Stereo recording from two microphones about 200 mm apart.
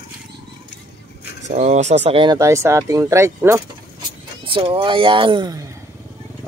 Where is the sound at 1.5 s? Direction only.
35° right (ahead or behind); by 3.6 s 15° right (ahead or behind).